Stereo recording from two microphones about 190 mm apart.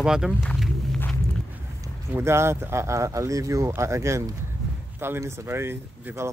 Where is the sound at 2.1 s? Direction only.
15° right (ahead or behind).